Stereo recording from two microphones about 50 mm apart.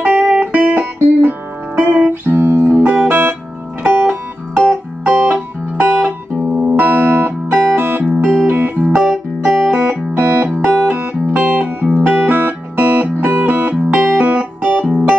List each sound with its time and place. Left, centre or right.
0.0 s music: right
1.9 s music: right
2.3 s music: right
2.8 s music: right
3.1 s music: right
3.8 s music: right
8.9 s music: right
10.1 s music: right
12.1 s music: right